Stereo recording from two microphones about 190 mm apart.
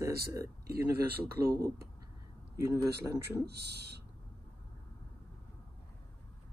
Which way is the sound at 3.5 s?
60° right (ahead or behind).